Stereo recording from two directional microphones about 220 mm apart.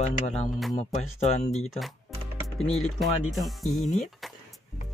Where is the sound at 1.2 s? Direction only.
30° left (ahead or behind).